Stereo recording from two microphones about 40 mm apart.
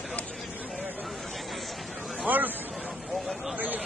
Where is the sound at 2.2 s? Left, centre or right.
Right.